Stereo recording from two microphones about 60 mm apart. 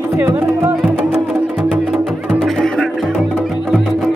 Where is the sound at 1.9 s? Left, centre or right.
Centre.